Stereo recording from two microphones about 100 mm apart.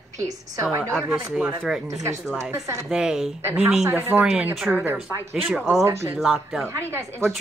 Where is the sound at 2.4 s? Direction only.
30° right (ahead or behind).